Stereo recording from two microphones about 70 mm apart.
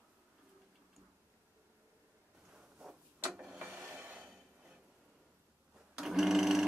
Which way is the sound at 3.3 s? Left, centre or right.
Centre.